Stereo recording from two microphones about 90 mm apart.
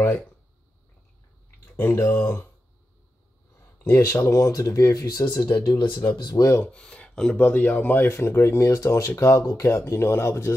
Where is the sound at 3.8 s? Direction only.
30° left (ahead or behind); by 6.1 s 65° left (ahead or behind).